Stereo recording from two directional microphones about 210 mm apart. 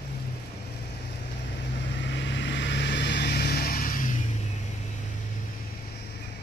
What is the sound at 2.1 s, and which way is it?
Vehicle, 55° left (ahead or behind).